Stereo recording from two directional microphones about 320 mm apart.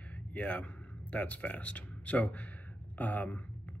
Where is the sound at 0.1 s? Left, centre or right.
Centre.